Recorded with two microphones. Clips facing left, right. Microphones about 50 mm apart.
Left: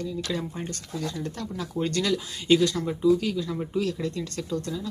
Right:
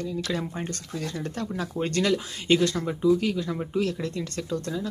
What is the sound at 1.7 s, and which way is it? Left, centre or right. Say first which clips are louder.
Speech: right 1 dB; right.